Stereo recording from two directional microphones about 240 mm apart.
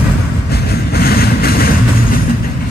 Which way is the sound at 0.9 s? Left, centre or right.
Left.